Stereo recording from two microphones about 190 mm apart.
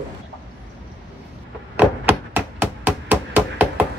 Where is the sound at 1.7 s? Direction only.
10° right (ahead or behind).